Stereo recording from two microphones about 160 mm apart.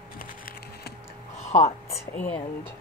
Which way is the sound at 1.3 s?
45° left (ahead or behind).